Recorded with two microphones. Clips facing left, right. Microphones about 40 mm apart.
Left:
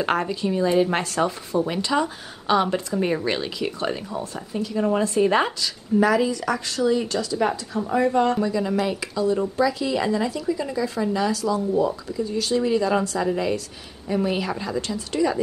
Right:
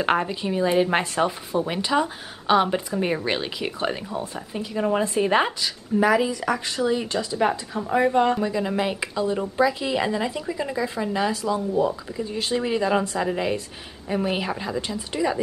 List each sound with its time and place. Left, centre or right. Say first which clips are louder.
0.2 s speech: left 1 dB; centre